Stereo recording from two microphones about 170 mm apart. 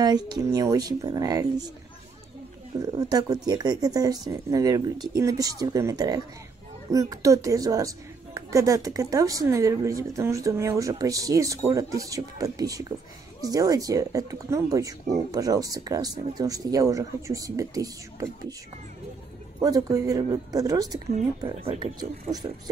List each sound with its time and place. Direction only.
0.0 s speech: 25° right (ahead or behind)
2.8 s speech: 20° right (ahead or behind)
19.6 s speech: 20° right (ahead or behind)